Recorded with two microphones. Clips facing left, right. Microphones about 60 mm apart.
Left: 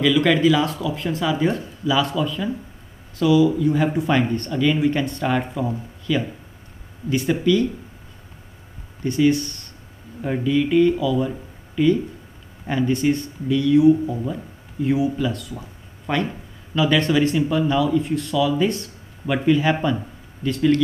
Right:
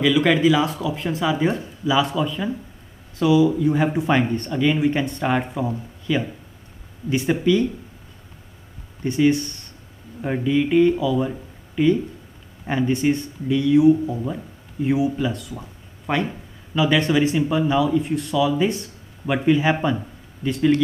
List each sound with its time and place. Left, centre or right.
0.0 s speech: centre
9.0 s speech: right